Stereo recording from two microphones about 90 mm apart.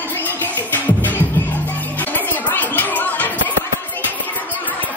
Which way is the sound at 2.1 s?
20° left (ahead or behind).